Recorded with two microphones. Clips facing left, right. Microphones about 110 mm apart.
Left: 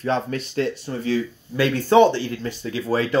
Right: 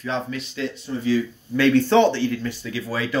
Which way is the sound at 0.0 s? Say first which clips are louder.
Left 4 dB; 45° left (ahead or behind).